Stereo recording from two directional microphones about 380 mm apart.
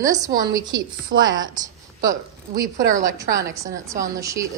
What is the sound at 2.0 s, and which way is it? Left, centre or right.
A woman's voice, centre.